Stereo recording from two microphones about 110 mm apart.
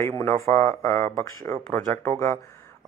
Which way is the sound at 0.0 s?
25° left (ahead or behind).